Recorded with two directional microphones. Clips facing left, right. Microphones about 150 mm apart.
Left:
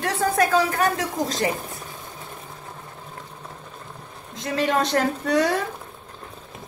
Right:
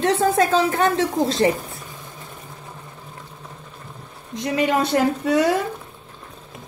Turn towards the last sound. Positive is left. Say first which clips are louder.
# right 3 dB
turn(degrees=-5)  # may be behind; listen again after turning